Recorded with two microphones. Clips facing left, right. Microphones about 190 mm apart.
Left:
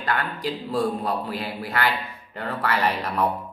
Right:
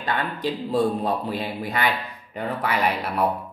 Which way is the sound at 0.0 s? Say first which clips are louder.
Right 1 dB; 20° right (ahead or behind).